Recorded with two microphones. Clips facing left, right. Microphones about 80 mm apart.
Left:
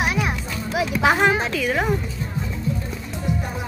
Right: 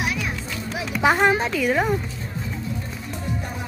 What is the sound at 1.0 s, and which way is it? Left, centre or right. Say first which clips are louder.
Speech: right 1 dB; centre.